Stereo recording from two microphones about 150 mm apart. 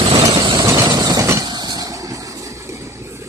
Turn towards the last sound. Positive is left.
turn(degrees=-20)  # may be behind; listen again after turning